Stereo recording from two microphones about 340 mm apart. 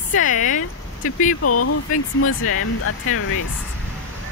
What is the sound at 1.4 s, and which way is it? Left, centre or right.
Speech, left.